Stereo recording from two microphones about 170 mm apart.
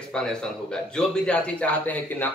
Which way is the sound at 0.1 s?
5° left (ahead or behind).